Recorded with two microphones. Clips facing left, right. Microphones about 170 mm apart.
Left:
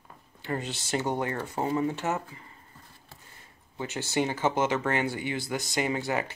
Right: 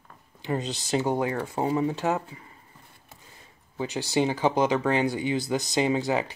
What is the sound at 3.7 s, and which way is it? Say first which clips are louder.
Speech: right 3 dB; 15° right (ahead or behind).